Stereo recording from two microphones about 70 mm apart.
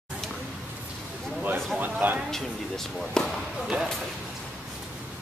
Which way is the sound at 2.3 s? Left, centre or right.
Centre.